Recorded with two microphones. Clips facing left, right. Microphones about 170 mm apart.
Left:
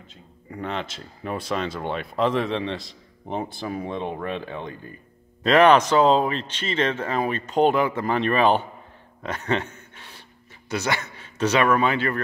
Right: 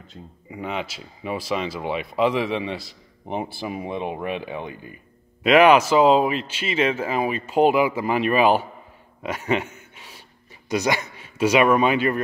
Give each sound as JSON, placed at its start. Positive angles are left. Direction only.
{"t": 0.5, "sound": "a man's voice", "side_deg": -5}